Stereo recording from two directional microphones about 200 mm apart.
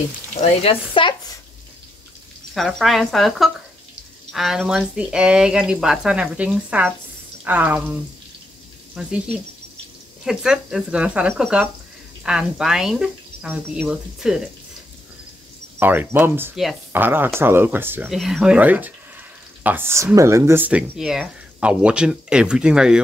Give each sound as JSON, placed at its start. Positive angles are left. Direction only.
{"t": 0.4, "sound": "speech", "side_deg": 30}
{"t": 2.5, "sound": "speech", "side_deg": 0}
{"t": 10.2, "sound": "speech", "side_deg": -5}
{"t": 15.8, "sound": "speech", "side_deg": -10}